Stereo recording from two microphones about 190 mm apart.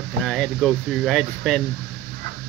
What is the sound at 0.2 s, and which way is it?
Speech, centre (ahead or behind).